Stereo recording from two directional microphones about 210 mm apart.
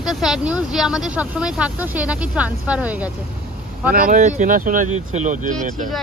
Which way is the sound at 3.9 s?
40° right (ahead or behind).